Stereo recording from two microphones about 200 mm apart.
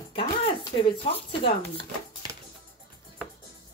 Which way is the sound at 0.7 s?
30° left (ahead or behind).